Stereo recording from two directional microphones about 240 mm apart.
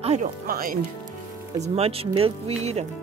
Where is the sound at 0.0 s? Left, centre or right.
Right.